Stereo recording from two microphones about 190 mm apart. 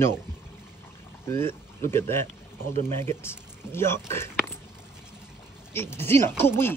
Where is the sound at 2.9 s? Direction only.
15° left (ahead or behind).